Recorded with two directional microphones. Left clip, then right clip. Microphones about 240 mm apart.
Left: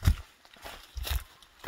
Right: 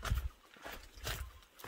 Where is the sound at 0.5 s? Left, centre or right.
Left.